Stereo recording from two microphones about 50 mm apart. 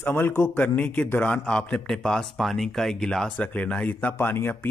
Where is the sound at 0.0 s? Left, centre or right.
Left.